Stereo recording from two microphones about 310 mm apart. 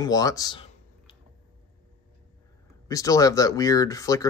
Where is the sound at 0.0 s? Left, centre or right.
Centre.